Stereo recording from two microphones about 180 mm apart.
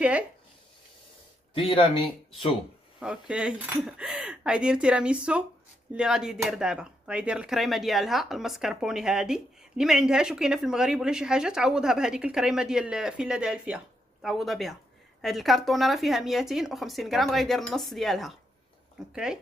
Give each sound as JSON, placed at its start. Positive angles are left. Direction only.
{"t": 1.5, "sound": "speech", "side_deg": 25}
{"t": 3.0, "sound": "speech", "side_deg": -5}